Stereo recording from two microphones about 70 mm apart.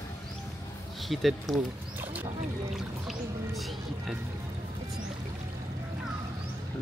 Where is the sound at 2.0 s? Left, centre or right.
Right.